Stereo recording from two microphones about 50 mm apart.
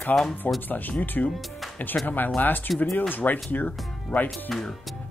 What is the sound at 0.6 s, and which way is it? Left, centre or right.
Speech, left.